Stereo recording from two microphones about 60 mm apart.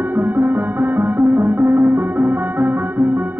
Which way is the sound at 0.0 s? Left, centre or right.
Right.